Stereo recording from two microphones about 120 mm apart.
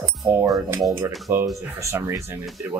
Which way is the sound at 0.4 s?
20° right (ahead or behind).